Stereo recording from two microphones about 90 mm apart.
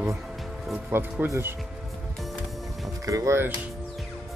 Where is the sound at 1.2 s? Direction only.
25° right (ahead or behind).